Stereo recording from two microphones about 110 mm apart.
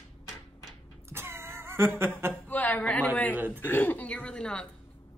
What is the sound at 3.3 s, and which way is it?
Speech, 15° right (ahead or behind).